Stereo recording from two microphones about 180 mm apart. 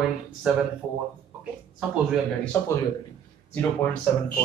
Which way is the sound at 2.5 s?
10° left (ahead or behind).